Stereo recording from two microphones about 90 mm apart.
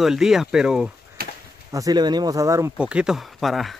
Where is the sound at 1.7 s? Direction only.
45° right (ahead or behind).